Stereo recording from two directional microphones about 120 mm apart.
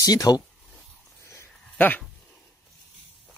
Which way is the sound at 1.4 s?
15° left (ahead or behind).